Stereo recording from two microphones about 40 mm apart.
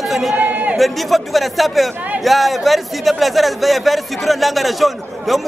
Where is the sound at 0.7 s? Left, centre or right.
Centre.